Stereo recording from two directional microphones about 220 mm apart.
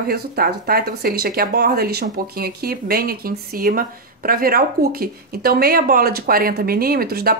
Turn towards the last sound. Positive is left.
turn(degrees=-45)  # may be behind; listen again after turning